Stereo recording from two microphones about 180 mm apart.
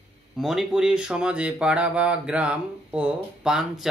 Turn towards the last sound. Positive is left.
turn(degrees=-5)  # may be behind; listen again after turning